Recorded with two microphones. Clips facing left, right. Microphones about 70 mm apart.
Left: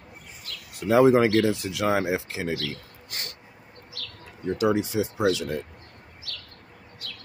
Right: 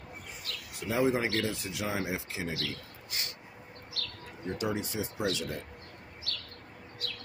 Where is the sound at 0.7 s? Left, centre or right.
Left.